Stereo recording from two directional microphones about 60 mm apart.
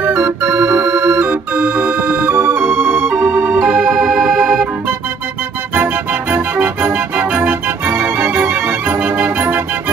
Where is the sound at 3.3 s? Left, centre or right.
Right.